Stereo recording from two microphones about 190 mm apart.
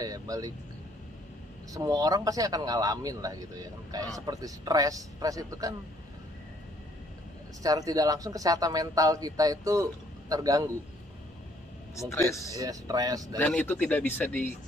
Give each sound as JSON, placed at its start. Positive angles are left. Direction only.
{"t": 0.0, "sound": "speech", "side_deg": -20}
{"t": 1.7, "sound": "a man's voice", "side_deg": -20}
{"t": 7.6, "sound": "a man's voice", "side_deg": -20}
{"t": 11.9, "sound": "speech", "side_deg": 15}
{"t": 12.5, "sound": "a man's voice", "side_deg": -20}
{"t": 13.4, "sound": "speech", "side_deg": 5}